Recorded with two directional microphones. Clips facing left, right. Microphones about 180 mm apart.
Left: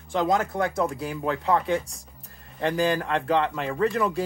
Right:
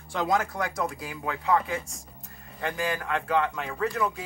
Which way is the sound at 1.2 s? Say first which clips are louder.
Left 2 dB; 45° left (ahead or behind).